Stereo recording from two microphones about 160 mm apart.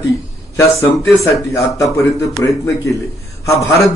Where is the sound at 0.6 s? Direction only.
15° left (ahead or behind).